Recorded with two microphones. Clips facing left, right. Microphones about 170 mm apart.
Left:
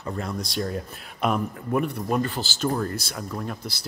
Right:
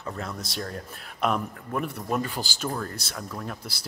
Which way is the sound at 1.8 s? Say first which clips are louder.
Left 3 dB; 5° right (ahead or behind).